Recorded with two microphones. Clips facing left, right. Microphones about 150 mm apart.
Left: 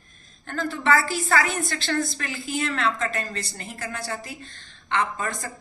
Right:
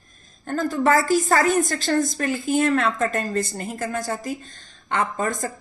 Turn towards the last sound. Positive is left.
turn(degrees=-45)  # may be behind; listen again after turning